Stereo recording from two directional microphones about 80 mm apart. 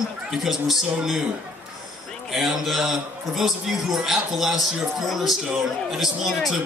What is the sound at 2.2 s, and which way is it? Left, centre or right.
A man's voice, centre.